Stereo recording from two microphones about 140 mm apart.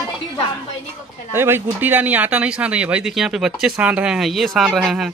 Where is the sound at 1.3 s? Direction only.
15° right (ahead or behind).